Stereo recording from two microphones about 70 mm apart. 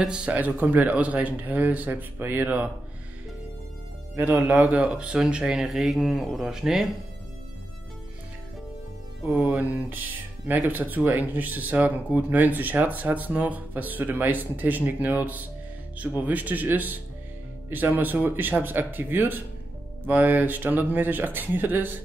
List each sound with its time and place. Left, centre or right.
0.0 s speech: centre
4.1 s speech: right; by 6.9 s centre
9.5 s speech: right